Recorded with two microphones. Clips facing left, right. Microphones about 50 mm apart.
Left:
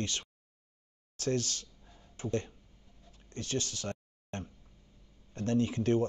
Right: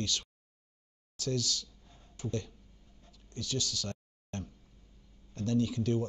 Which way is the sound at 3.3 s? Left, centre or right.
Left.